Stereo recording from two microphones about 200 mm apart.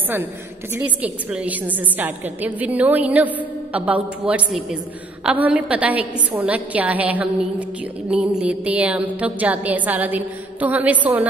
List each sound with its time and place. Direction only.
0.7 s a woman's voice: 5° right (ahead or behind)